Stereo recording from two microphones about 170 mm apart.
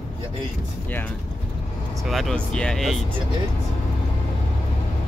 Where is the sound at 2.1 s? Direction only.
Centre (ahead or behind).